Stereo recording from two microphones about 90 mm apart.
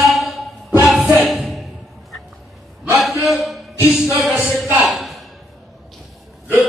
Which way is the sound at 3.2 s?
Centre (ahead or behind).